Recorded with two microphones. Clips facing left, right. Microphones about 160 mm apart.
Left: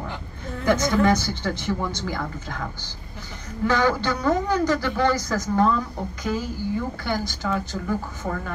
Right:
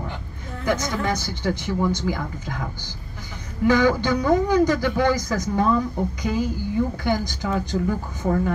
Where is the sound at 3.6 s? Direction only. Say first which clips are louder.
Right 3 dB; 15° right (ahead or behind).